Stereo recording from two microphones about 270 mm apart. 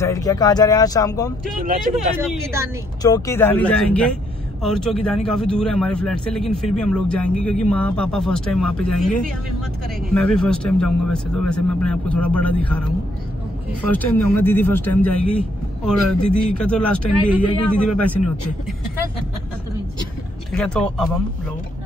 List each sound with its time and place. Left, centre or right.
0.0 s speech: centre
1.5 s speech: right
2.0 s speech: centre
3.0 s speech: centre
10.1 s speech: centre
20.5 s speech: centre